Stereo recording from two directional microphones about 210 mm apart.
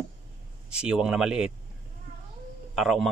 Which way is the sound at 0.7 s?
5° right (ahead or behind).